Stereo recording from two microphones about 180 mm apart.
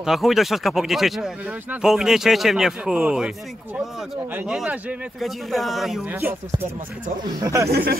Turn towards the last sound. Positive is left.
turn(degrees=-55)  # may be behind; listen again after turning